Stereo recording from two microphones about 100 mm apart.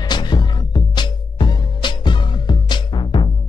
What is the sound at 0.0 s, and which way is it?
Music, 45° left (ahead or behind).